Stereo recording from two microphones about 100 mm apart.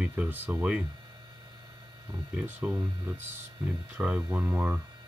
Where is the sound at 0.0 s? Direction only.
15° right (ahead or behind).